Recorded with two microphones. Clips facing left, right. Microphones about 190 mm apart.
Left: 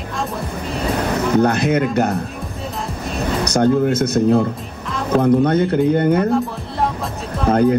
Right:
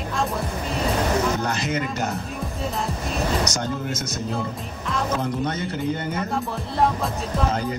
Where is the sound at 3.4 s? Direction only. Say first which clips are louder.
Left 12 dB; 60° left (ahead or behind).